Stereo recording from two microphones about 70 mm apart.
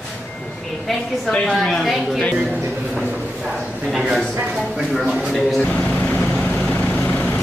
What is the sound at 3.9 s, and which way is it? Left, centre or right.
Speech, centre.